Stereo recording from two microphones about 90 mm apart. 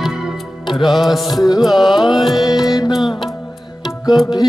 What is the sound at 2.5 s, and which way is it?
Music, 45° left (ahead or behind).